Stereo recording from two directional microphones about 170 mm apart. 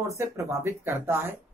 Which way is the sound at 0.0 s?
20° right (ahead or behind).